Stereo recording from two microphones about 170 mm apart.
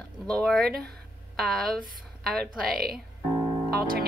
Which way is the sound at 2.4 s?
65° right (ahead or behind).